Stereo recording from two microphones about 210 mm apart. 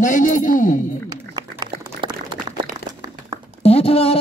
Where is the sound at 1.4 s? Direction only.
20° right (ahead or behind).